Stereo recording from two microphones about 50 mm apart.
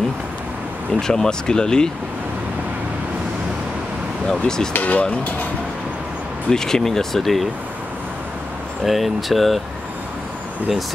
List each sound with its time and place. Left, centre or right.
0.9 s speech: centre
4.3 s speech: centre
4.7 s speech: left
6.5 s speech: centre
8.8 s speech: centre